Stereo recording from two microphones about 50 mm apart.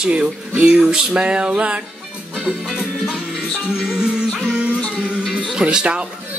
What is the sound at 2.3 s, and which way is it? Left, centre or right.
Music, centre.